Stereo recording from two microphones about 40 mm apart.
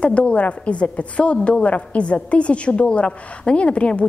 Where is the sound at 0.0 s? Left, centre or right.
Left.